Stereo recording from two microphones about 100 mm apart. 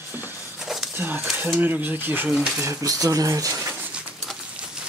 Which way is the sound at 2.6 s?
30° right (ahead or behind).